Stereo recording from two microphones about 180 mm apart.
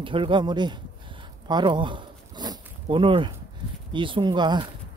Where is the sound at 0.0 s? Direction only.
30° right (ahead or behind).